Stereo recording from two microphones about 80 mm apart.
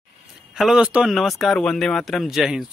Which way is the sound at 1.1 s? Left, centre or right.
Centre.